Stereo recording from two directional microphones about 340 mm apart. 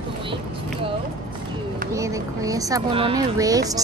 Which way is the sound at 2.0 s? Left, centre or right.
Centre.